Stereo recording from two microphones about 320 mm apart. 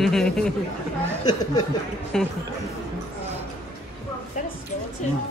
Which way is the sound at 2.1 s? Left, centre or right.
Centre.